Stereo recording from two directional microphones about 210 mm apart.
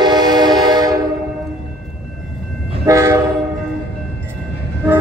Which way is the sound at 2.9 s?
15° right (ahead or behind).